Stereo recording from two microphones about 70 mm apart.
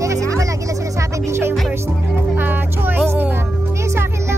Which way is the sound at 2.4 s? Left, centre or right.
Right.